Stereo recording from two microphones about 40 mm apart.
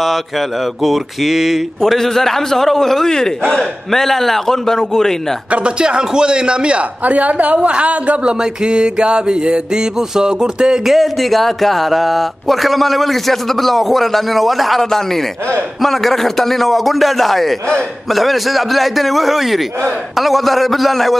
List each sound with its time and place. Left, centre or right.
0.8 s a sound: centre
1.8 s a man's voice: centre
5.5 s mantra: right
7.1 s a woman's voice: right
8.3 s mantra: right
10.9 s speech: centre